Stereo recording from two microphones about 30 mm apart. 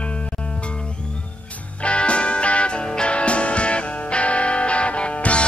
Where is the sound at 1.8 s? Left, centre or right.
Left.